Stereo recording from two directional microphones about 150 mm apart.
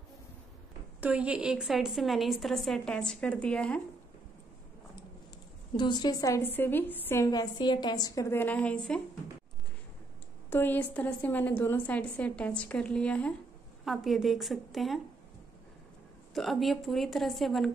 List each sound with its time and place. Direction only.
1.0 s a woman's voice: 10° right (ahead or behind)
5.8 s a woman's voice: 30° left (ahead or behind); by 7.2 s 15° left (ahead or behind)
7.2 s a woman's voice: 30° left (ahead or behind); by 9.0 s 5° left (ahead or behind)
10.5 s a woman's voice: 15° left (ahead or behind)
16.3 s a woman's voice: centre (ahead or behind)